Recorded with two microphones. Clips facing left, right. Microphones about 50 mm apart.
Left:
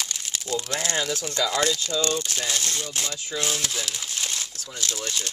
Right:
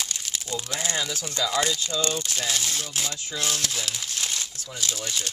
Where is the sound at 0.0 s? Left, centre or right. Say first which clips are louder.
Left 1 dB; centre.